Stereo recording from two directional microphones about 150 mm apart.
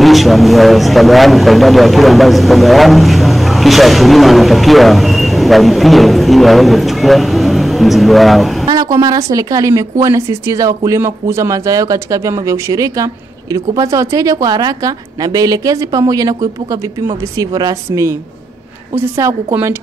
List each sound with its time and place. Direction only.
0.0 s speech: centre (ahead or behind)
8.6 s speech: 25° right (ahead or behind)
17.4 s a woman's voice: 25° right (ahead or behind)